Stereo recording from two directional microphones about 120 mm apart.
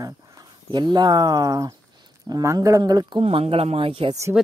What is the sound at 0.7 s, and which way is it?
Speech, 40° right (ahead or behind).